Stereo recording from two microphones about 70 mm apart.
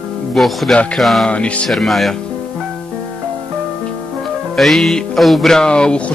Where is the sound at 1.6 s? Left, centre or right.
Centre.